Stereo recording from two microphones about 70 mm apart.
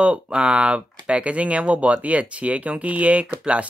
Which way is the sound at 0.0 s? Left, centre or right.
Centre.